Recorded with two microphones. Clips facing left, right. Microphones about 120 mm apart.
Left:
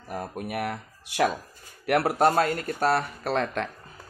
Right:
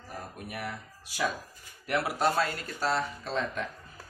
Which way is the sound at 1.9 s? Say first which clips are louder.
Left 6 dB; 55° left (ahead or behind).